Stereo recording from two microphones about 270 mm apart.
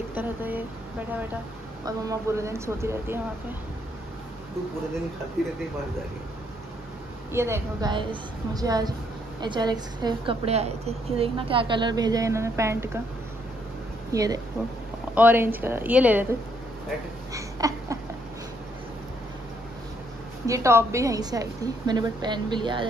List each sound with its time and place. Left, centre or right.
0.1 s speech: centre
1.9 s a woman's voice: centre
5.4 s speech: centre
7.3 s a woman's voice: centre
14.1 s a woman's voice: centre
17.3 s a sound: centre
20.4 s a woman's voice: centre